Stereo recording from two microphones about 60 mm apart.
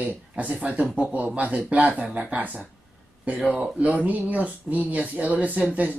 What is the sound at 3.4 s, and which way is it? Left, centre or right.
Speech, centre.